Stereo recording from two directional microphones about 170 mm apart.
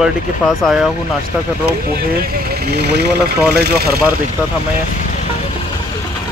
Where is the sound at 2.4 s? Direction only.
65° right (ahead or behind).